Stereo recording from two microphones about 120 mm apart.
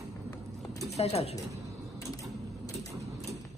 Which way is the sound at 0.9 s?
60° left (ahead or behind).